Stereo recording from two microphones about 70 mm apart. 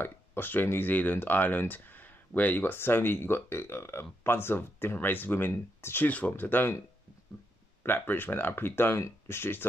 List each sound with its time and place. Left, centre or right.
0.0 s speech: left
6.0 s speech: left
7.8 s speech: left